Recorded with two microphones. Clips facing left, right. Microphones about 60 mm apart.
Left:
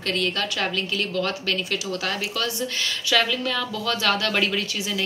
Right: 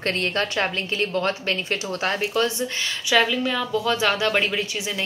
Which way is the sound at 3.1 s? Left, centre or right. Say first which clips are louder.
Right 3 dB; centre.